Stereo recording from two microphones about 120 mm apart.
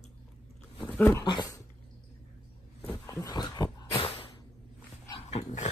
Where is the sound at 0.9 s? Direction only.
15° left (ahead or behind).